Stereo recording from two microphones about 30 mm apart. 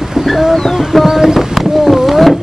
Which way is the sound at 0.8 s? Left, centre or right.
Centre.